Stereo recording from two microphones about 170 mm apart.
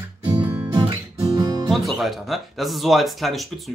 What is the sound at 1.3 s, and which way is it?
Music, 25° right (ahead or behind).